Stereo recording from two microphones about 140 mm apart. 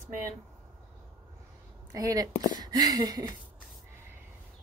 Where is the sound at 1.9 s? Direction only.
25° right (ahead or behind).